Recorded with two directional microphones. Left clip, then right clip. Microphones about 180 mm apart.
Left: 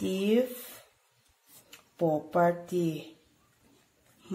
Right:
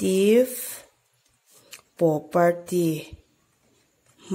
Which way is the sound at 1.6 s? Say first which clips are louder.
Right 7 dB; 45° right (ahead or behind).